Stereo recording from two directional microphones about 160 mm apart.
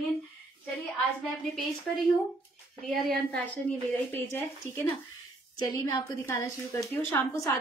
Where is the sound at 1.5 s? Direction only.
Centre (ahead or behind).